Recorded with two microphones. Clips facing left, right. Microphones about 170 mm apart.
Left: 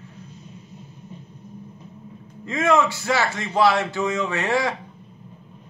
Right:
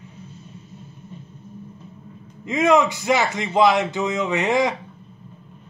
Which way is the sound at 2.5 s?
20° right (ahead or behind).